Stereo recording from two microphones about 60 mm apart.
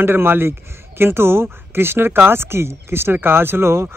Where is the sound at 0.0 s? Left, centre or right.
Right.